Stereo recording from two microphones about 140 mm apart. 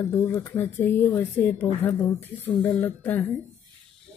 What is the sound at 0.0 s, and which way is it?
A woman's voice, 15° left (ahead or behind).